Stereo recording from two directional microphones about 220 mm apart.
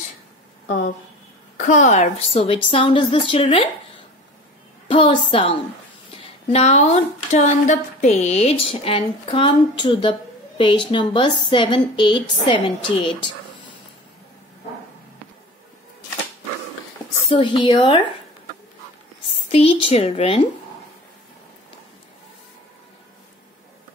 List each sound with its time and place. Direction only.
1.6 s speech: 35° left (ahead or behind)
4.8 s a woman's voice: 25° left (ahead or behind)
17.3 s speech: 20° left (ahead or behind)
19.5 s speech: 25° left (ahead or behind)